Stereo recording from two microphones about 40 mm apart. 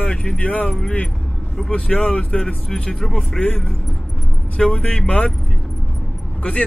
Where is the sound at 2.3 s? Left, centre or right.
Centre.